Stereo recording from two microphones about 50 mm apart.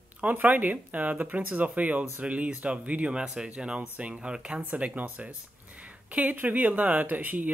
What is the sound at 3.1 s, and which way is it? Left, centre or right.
Speech, centre.